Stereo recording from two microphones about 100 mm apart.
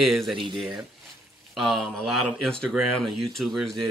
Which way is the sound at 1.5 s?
5° left (ahead or behind).